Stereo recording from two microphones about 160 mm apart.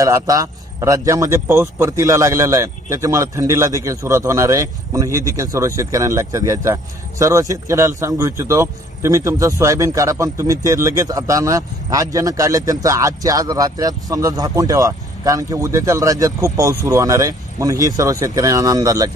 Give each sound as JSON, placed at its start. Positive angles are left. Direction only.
{"t": 0.0, "sound": "speech", "side_deg": -20}